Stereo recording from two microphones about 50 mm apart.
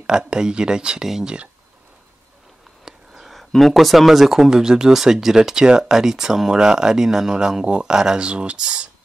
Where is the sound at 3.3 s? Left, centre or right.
Centre.